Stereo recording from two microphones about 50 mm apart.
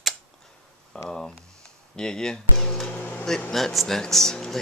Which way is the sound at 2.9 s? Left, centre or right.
Left.